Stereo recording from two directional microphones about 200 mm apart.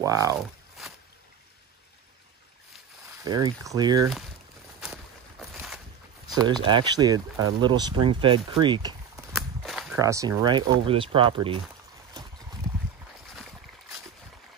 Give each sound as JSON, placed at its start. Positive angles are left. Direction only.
{"t": 0.0, "sound": "speech", "side_deg": -15}
{"t": 3.3, "sound": "speech", "side_deg": -20}
{"t": 4.7, "sound": "a sound", "side_deg": 0}
{"t": 6.2, "sound": "speech", "side_deg": -20}
{"t": 9.3, "sound": "walk", "side_deg": 0}
{"t": 9.9, "sound": "speech", "side_deg": -15}